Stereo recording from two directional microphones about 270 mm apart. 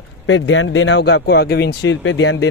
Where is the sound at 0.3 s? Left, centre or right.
Left.